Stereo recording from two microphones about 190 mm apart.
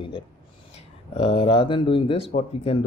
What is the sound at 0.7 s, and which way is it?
Speech, 30° left (ahead or behind).